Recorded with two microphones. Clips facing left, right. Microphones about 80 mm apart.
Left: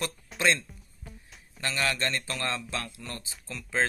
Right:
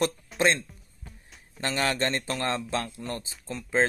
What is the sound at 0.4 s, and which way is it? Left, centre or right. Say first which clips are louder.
Speech: right 2 dB; right.